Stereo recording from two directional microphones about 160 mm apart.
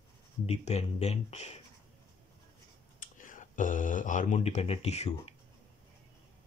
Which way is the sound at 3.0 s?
55° left (ahead or behind).